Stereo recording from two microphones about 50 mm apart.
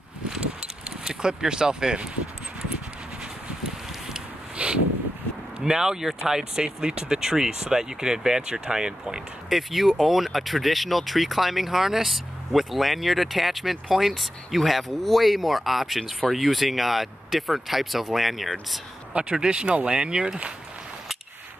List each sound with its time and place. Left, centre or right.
0.3 s keys jangling: centre
4.6 s a sound: right
5.6 s speech: centre
9.5 s speech: centre
19.3 s speech: centre